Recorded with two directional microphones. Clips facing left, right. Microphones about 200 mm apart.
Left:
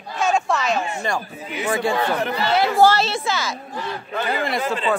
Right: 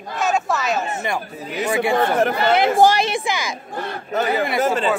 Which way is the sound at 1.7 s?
20° right (ahead or behind).